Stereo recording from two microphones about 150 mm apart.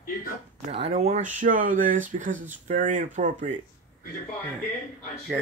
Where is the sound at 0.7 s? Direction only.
45° right (ahead or behind).